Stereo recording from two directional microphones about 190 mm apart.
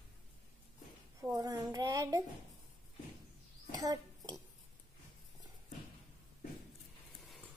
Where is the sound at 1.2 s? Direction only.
15° right (ahead or behind).